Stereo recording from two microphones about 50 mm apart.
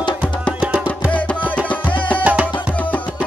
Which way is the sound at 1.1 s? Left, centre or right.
Left.